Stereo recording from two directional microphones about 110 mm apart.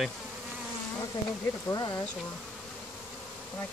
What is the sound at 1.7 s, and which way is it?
Speech, 35° left (ahead or behind).